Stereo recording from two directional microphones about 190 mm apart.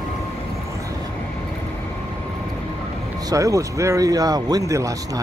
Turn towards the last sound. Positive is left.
turn(degrees=-15)  # may be behind; listen again after turning